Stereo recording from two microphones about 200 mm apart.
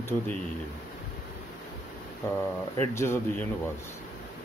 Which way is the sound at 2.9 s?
15° left (ahead or behind).